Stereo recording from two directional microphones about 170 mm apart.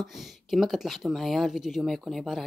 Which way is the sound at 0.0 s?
Centre (ahead or behind).